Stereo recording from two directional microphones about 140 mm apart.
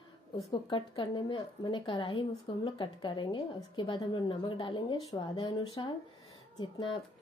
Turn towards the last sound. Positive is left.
turn(degrees=35)  # may be behind; listen again after turning